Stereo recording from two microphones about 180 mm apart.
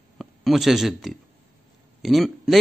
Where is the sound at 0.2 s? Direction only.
Centre (ahead or behind).